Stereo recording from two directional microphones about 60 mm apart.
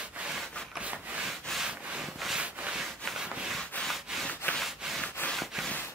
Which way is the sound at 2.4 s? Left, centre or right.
Right.